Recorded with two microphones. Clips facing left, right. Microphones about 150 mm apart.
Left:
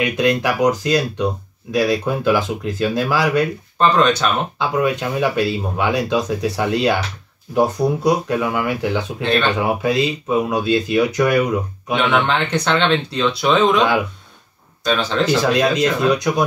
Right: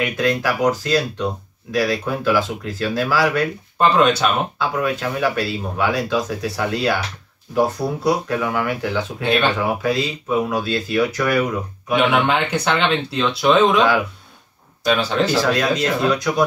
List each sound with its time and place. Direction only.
0.0 s speech: 20° left (ahead or behind)
3.7 s speech: 5° right (ahead or behind)
4.6 s speech: 20° left (ahead or behind)
9.2 s speech: 10° right (ahead or behind)
9.6 s speech: 20° left (ahead or behind)
11.9 s speech: 10° right (ahead or behind)
15.4 s speech: 20° left (ahead or behind)